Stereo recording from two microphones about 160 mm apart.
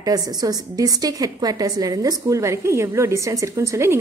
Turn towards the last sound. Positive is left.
turn(degrees=-20)  # may be behind; listen again after turning